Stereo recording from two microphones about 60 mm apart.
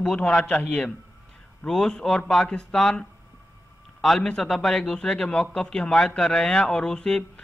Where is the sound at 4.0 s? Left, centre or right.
Centre.